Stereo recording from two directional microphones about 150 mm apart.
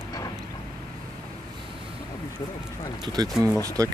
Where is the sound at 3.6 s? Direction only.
25° right (ahead or behind).